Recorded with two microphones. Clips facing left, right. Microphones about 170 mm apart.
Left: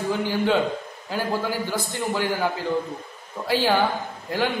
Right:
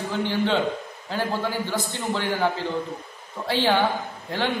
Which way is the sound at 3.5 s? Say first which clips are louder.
Left 1 dB; 10° left (ahead or behind).